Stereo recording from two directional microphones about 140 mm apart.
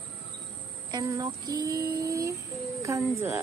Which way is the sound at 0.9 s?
25° right (ahead or behind).